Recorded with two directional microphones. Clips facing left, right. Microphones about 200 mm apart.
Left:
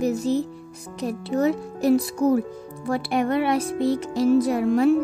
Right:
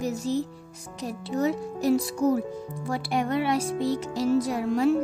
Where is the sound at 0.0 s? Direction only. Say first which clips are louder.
Left 5 dB; 60° left (ahead or behind).